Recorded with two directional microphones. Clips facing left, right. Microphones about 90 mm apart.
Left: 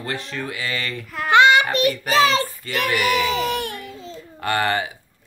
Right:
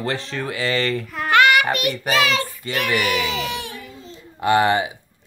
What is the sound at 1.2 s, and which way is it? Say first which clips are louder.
Babbling: left 2 dB; 20° left (ahead or behind).